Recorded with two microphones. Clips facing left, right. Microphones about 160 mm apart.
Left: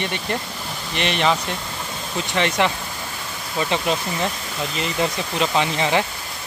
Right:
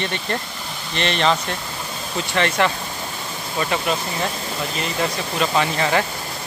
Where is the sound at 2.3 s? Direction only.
15° left (ahead or behind).